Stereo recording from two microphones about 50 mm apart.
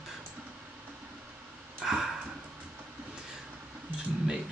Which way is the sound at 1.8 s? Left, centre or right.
Centre.